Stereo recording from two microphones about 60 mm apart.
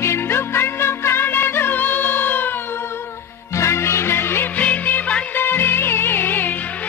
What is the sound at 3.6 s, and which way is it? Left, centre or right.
Music, left.